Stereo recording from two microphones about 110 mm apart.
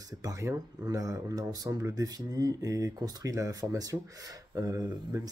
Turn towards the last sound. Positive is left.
turn(degrees=-35)  # may be behind; listen again after turning